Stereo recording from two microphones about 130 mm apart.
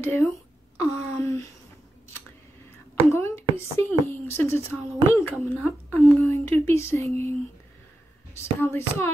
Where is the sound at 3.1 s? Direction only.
20° left (ahead or behind).